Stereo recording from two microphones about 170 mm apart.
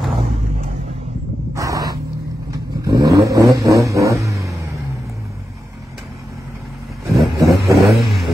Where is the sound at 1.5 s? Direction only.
20° right (ahead or behind).